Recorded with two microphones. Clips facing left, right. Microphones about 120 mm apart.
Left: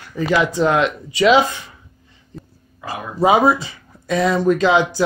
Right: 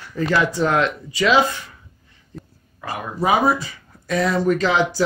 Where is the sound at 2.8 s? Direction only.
25° left (ahead or behind).